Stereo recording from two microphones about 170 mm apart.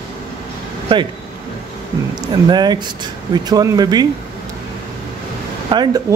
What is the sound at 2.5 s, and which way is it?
Speech, 25° right (ahead or behind).